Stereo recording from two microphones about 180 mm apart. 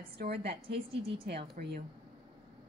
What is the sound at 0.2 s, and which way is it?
Speech, 65° right (ahead or behind).